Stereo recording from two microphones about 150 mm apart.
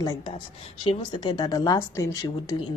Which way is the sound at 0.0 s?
25° left (ahead or behind).